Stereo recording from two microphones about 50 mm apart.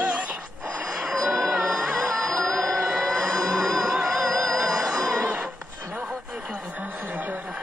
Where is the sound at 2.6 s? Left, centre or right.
Centre.